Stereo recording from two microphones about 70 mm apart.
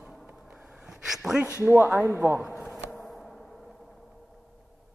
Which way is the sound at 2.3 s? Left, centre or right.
Centre.